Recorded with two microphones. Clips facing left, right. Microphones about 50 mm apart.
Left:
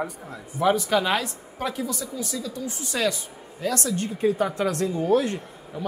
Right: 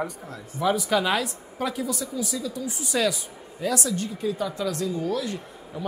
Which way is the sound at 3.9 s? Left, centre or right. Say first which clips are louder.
Left 5 dB; left.